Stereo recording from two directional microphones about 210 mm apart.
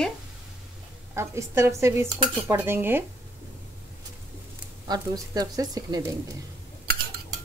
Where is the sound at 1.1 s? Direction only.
10° right (ahead or behind).